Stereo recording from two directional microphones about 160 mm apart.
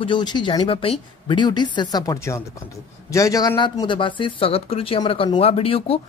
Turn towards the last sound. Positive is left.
turn(degrees=35)  # may be behind; listen again after turning